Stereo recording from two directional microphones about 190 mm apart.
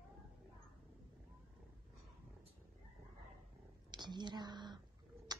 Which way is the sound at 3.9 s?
25° right (ahead or behind).